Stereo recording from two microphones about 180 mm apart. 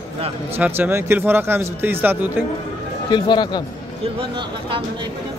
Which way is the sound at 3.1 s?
25° left (ahead or behind).